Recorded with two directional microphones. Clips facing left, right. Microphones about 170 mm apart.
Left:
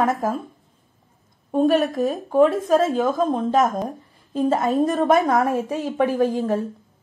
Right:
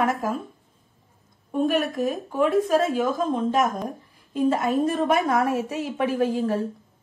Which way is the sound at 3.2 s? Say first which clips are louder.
Left 3 dB; 45° left (ahead or behind).